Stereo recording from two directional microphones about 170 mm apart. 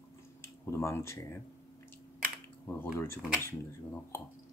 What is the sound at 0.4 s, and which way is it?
Tick-tock, 15° left (ahead or behind).